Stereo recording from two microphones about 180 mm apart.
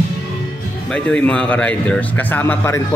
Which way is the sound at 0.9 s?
5° left (ahead or behind).